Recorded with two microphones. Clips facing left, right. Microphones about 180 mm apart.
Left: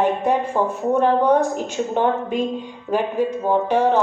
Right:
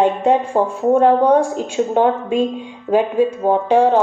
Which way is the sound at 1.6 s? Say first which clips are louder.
Right 5 dB; 15° right (ahead or behind).